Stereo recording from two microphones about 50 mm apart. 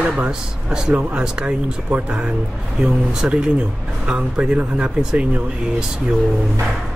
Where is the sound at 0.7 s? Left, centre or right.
Centre.